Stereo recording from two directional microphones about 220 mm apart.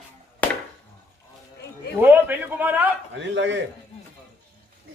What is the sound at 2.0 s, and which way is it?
Speech, 10° right (ahead or behind).